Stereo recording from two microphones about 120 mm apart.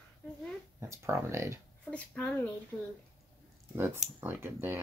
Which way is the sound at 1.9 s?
10° left (ahead or behind).